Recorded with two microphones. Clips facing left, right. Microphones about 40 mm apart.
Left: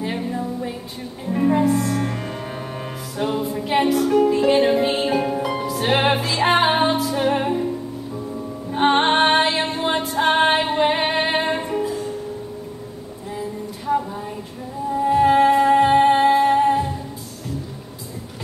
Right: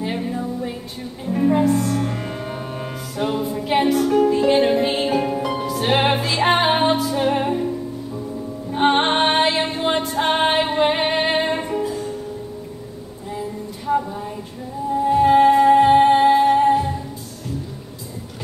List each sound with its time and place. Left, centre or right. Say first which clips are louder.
0.0 s music: right 1 dB; centre
8.7 s music: left 1 dB; centre
11.3 s music: even; centre
13.8 s a sound: right 1 dB; centre
15.0 s music: right 1 dB; centre